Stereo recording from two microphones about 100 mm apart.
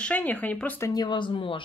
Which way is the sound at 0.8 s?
35° left (ahead or behind).